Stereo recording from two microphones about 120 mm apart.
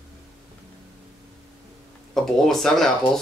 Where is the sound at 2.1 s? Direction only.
5° left (ahead or behind).